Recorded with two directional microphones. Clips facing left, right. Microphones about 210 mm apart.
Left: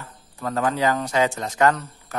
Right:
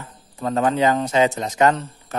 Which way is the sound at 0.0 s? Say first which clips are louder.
Right 3 dB; 20° right (ahead or behind).